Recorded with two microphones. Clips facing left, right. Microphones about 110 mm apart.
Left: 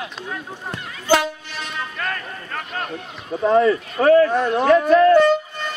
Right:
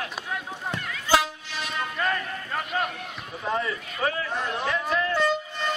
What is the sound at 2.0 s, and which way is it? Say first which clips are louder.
Speech: right 1 dB; 10° right (ahead or behind).